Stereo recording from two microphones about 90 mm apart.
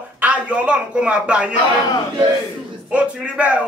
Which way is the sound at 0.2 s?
15° right (ahead or behind).